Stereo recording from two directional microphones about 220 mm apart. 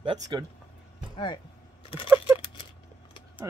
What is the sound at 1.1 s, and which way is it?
Single-lens reflex camera, 20° left (ahead or behind).